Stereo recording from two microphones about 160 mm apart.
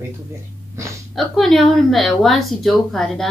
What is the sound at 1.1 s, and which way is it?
Speech, centre (ahead or behind).